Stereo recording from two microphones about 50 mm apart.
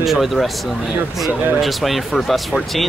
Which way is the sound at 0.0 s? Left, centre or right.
Centre.